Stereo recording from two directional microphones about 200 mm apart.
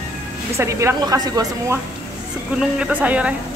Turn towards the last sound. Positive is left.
turn(degrees=-5)  # may be behind; listen again after turning